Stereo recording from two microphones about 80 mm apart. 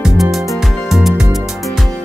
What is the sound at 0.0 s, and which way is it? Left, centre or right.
Music, centre.